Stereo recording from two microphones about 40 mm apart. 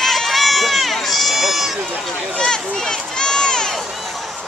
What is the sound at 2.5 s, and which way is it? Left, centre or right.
Crowd, centre.